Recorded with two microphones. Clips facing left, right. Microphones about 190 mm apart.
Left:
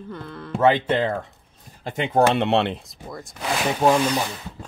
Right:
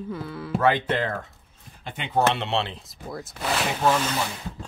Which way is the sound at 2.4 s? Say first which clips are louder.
Left 7 dB; 60° left (ahead or behind).